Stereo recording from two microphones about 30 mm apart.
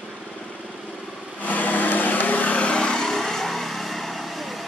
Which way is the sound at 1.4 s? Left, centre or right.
Left.